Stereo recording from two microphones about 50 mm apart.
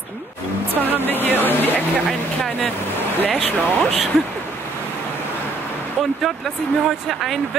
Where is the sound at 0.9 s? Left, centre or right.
Left.